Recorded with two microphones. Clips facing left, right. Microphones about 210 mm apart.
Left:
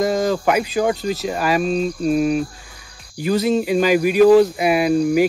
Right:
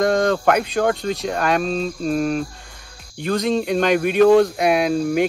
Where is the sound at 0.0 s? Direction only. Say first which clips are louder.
Right 1 dB; 5° left (ahead or behind).